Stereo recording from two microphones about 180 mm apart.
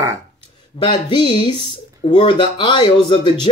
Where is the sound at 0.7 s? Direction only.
25° left (ahead or behind).